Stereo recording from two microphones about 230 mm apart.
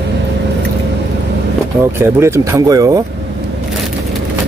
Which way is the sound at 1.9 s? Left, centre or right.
Centre.